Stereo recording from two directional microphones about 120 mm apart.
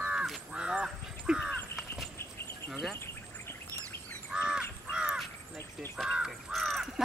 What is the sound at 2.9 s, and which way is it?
Bird, 20° left (ahead or behind).